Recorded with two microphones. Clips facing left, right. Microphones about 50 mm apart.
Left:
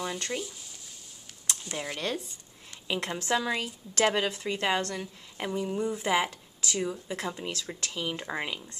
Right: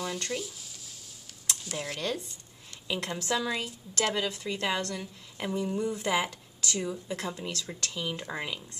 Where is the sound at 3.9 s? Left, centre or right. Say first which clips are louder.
Left 4 dB; left.